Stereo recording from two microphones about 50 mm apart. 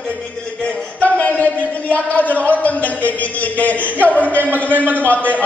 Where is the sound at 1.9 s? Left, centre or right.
Left.